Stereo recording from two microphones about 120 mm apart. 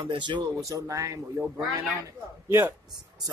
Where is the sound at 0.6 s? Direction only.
30° right (ahead or behind).